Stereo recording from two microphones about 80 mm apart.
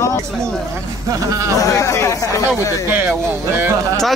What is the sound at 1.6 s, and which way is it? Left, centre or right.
Speech, left.